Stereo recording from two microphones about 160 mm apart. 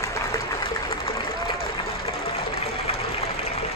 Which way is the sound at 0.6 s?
30° left (ahead or behind).